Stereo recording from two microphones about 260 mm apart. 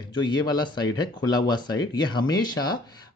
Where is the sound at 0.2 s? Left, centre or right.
Centre.